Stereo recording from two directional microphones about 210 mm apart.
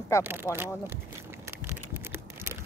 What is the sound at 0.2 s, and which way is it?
Speech, 10° right (ahead or behind).